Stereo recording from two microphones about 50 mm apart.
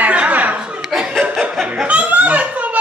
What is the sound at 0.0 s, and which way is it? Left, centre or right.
Chuckle, right.